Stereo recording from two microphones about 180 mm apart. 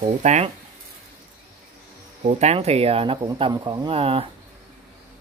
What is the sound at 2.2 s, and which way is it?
Speech, 35° right (ahead or behind).